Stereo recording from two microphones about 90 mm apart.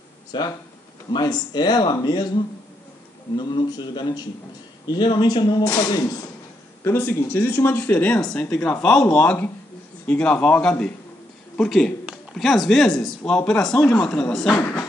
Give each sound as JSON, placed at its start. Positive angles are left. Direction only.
{"t": 0.3, "sound": "speech", "side_deg": 55}
{"t": 6.8, "sound": "a man's voice", "side_deg": 25}
{"t": 12.4, "sound": "a man's voice", "side_deg": 0}
{"t": 14.5, "sound": "speech", "side_deg": 25}